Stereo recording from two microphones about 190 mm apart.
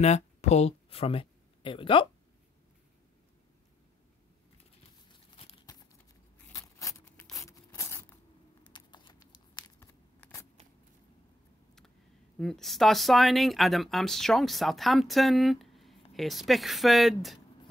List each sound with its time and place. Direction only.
0.0 s speech: 35° left (ahead or behind)
5.1 s crumpling: 30° left (ahead or behind)
6.3 s a sound: 10° left (ahead or behind)
12.4 s speech: centre (ahead or behind)